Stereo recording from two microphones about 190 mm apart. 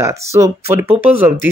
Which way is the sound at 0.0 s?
15° right (ahead or behind).